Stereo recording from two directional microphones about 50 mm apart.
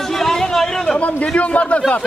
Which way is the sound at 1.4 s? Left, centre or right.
Left.